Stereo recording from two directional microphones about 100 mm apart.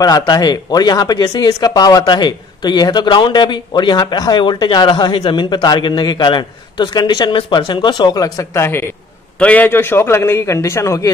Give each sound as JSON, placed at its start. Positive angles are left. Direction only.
{"t": 0.0, "sound": "speech", "side_deg": 40}
{"t": 9.4, "sound": "a man's voice", "side_deg": 15}